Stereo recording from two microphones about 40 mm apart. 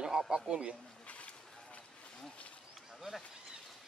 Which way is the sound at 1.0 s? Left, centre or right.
Left.